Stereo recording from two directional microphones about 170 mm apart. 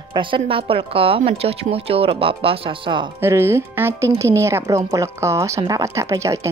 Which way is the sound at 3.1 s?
15° right (ahead or behind).